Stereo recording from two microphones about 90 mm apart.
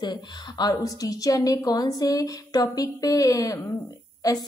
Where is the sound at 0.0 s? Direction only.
50° left (ahead or behind).